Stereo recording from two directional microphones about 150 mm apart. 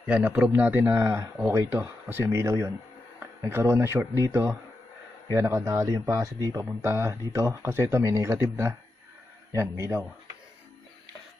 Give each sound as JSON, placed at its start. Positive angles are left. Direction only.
{"t": 0.0, "sound": "speech", "side_deg": -10}